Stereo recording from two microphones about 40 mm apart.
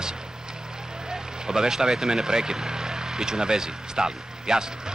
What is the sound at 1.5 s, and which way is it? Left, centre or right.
Speech, centre.